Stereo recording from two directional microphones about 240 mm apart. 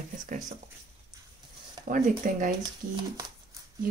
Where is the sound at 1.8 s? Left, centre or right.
Right.